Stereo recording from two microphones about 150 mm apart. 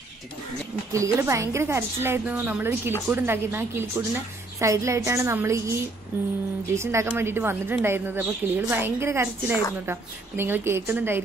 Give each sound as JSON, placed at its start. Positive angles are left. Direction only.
{"t": 0.9, "sound": "a woman's voice", "side_deg": -20}